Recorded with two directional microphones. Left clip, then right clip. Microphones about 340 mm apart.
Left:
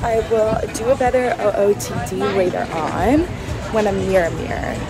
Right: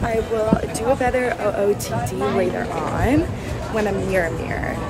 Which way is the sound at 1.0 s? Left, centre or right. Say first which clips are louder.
Left 3 dB; centre.